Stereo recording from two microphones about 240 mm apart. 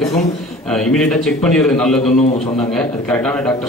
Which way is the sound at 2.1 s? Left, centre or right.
Left.